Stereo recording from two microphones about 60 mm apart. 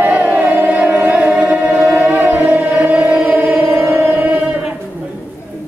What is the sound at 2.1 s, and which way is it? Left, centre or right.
Music, right.